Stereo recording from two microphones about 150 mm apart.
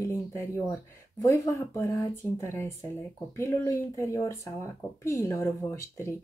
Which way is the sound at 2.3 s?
15° left (ahead or behind).